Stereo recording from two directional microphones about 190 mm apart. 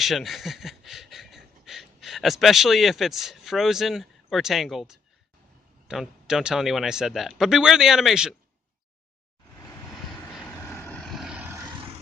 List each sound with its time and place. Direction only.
0.0 s speech: centre (ahead or behind)
10.3 s vehicle: 5° left (ahead or behind); by 11.7 s 15° right (ahead or behind)